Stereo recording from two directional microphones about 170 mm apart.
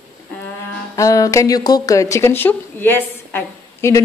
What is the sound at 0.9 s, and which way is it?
Speech, 20° left (ahead or behind).